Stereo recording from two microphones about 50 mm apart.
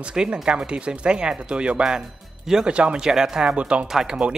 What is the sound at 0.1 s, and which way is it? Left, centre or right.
Speech, centre.